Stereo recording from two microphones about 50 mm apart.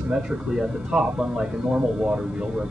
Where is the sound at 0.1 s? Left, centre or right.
Centre.